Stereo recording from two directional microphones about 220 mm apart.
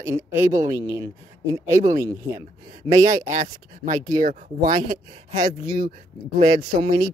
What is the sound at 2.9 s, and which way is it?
Speech, 15° right (ahead or behind).